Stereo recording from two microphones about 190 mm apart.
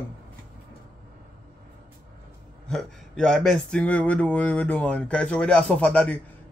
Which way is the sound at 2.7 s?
5° left (ahead or behind).